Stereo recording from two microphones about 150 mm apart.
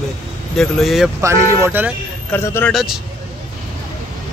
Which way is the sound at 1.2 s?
20° right (ahead or behind).